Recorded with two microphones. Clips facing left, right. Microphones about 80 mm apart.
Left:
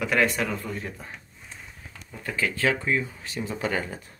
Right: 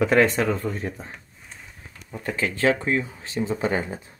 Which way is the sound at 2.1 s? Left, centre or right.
Right.